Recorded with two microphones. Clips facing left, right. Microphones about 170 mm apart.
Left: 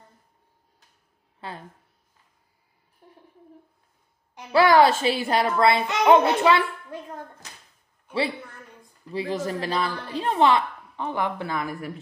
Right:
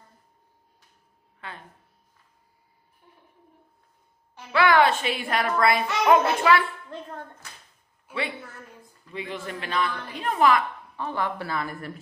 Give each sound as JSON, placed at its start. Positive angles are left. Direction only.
{"t": 3.0, "sound": "a sound", "side_deg": 35}
{"t": 4.5, "sound": "a woman's voice", "side_deg": 35}
{"t": 8.1, "sound": "a man's voice", "side_deg": -5}
{"t": 9.1, "sound": "a woman's voice", "side_deg": 35}
{"t": 11.0, "sound": "speech", "side_deg": 15}